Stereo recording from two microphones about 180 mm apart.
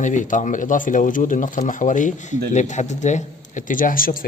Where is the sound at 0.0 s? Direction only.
45° left (ahead or behind).